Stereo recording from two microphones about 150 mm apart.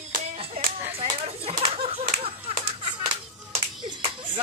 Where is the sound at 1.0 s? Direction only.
40° right (ahead or behind).